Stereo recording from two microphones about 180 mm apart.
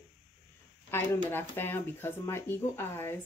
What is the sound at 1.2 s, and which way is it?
Speech, 10° left (ahead or behind).